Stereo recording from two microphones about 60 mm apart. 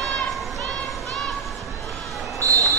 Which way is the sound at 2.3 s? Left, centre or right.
Right.